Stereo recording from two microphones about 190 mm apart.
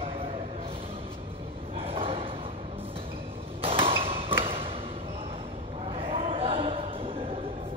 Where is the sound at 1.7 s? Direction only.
30° right (ahead or behind).